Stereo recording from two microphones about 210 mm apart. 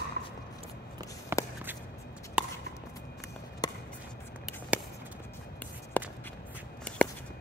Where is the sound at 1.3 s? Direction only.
10° right (ahead or behind).